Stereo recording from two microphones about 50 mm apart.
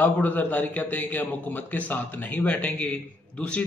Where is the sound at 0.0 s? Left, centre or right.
Left.